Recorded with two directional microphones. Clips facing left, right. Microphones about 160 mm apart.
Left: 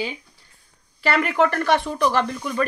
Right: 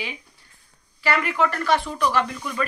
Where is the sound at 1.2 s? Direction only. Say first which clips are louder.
Left 4 dB; 55° left (ahead or behind).